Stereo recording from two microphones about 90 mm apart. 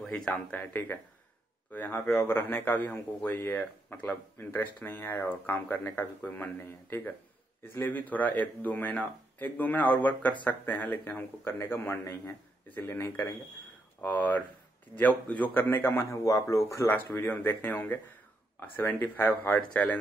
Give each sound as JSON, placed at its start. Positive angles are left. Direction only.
{"t": 0.0, "sound": "speech", "side_deg": 10}
{"t": 16.9, "sound": "speech", "side_deg": 20}
{"t": 19.7, "sound": "speech", "side_deg": 10}